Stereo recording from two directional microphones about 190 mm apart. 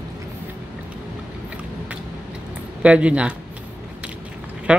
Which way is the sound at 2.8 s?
5° right (ahead or behind).